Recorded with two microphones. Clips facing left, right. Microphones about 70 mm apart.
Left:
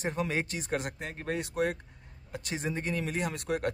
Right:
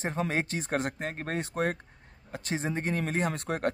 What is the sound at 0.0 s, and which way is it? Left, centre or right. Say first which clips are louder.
Speech: right 1 dB; right.